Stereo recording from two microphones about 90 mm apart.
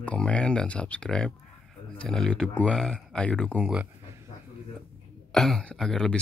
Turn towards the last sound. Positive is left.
turn(degrees=5)  # may be behind; listen again after turning